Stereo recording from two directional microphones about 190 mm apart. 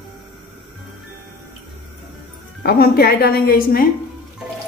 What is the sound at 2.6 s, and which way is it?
A woman's voice, 55° left (ahead or behind).